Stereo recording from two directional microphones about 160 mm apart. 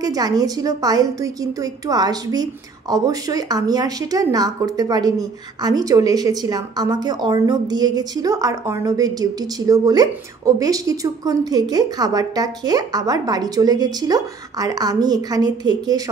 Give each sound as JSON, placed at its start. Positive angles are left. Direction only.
{"t": 0.0, "sound": "a woman's voice", "side_deg": -25}